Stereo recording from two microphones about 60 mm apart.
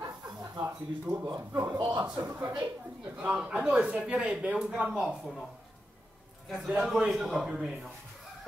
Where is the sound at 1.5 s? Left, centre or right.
Right.